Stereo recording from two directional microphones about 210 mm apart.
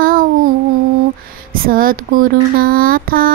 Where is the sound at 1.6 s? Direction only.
45° right (ahead or behind).